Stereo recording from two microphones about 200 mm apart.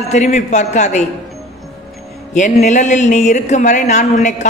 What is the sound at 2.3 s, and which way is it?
Speech, 35° left (ahead or behind).